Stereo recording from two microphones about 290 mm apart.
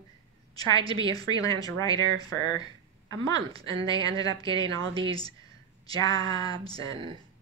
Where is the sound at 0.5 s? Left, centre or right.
Centre.